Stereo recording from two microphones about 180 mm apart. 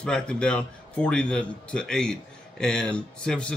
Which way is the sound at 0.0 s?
5° left (ahead or behind).